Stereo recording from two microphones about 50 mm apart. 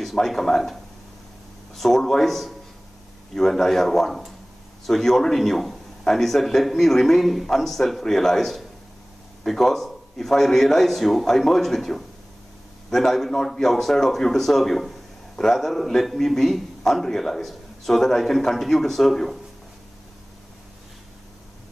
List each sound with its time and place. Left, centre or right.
0.0 s speech: centre
1.8 s speech: centre